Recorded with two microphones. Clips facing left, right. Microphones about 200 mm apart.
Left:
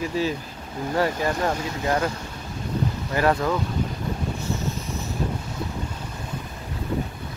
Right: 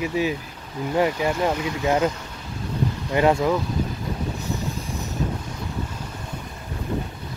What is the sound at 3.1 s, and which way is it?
Speech, 15° right (ahead or behind).